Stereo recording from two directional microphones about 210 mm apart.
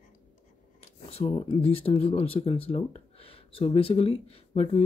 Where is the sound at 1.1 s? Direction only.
25° left (ahead or behind).